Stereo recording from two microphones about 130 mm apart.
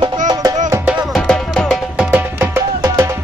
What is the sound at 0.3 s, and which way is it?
Music, 30° right (ahead or behind).